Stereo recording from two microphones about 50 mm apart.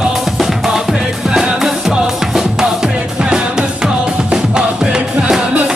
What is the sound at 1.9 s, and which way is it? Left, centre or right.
Music, centre.